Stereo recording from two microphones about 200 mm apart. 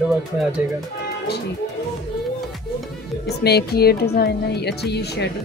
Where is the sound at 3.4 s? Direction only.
55° left (ahead or behind).